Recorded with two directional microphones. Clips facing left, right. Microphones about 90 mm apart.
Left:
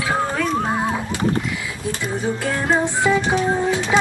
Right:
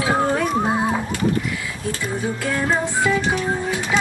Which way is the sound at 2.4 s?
25° left (ahead or behind).